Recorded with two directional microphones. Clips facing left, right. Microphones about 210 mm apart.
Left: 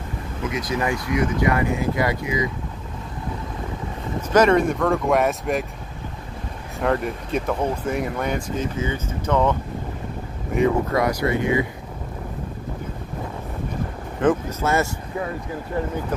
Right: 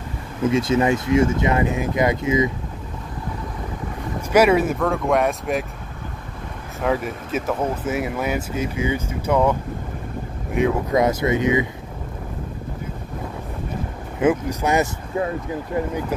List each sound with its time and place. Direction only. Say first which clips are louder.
0.4 s speech: right 7 dB; 25° right (ahead or behind)
4.3 s speech: right 1 dB; 10° right (ahead or behind)
6.8 s speech: even; centre (ahead or behind)
10.9 s speech: right 2 dB; 20° right (ahead or behind)
14.2 s speech: right 1 dB; 15° right (ahead or behind)